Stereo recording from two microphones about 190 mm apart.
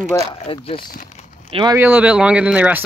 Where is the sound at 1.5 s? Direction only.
20° right (ahead or behind).